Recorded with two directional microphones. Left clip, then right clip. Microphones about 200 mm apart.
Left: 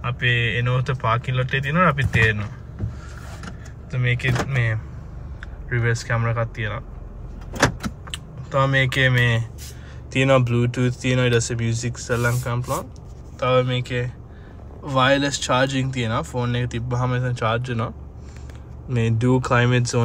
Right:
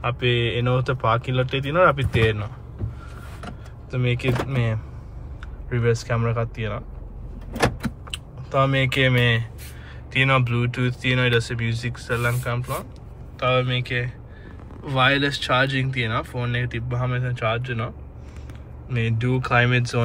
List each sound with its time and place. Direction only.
0.0 s speech: 10° right (ahead or behind)
3.9 s speech: 10° right (ahead or behind)
5.7 s speech: 5° right (ahead or behind)
8.5 s speech: centre (ahead or behind)
10.1 s speech: 15° left (ahead or behind)